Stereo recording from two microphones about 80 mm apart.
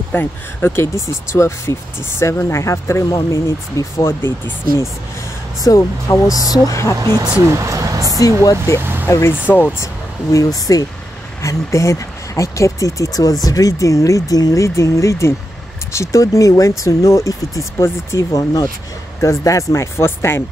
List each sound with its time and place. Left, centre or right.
0.1 s speech: left
5.8 s speech: left
7.0 s speech: right
7.4 s speech: right
8.4 s speech: left
9.5 s speech: left
10.3 s speech: left